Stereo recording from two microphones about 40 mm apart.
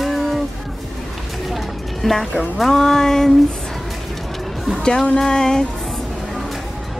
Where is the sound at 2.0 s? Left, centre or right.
Centre.